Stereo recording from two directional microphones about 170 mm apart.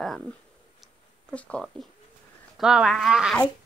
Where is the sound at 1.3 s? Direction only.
5° left (ahead or behind).